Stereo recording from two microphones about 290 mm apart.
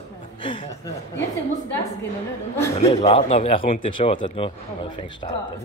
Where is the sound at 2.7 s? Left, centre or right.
Left.